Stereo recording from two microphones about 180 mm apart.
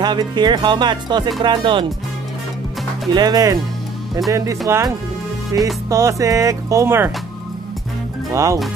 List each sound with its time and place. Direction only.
0.0 s speech: 25° right (ahead or behind)
3.2 s speech: 20° right (ahead or behind)
8.3 s speech: 15° right (ahead or behind)